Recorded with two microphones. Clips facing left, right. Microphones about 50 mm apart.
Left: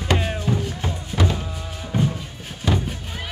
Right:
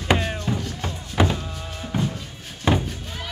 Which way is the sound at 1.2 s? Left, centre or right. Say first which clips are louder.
Right 2 dB; right.